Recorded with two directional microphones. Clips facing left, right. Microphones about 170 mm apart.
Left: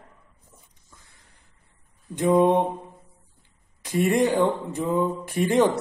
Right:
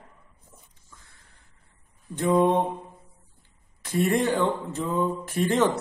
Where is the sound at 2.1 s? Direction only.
20° left (ahead or behind).